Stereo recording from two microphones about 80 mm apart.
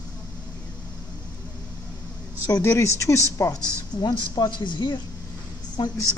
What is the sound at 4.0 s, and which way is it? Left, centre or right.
Speech, left.